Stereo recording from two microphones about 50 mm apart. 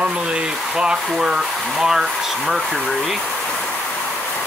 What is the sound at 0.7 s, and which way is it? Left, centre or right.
Speech, centre.